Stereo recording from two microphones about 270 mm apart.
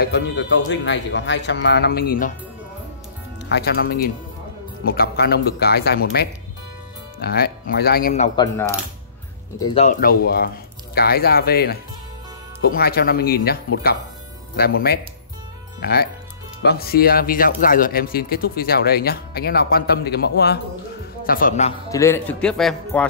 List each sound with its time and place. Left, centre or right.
0.0 s speech: left
3.4 s speech: left
9.6 s speech: centre
14.6 s speech: left
21.8 s speech: centre